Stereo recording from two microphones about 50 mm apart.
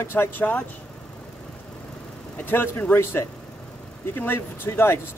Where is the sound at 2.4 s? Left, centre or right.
Left.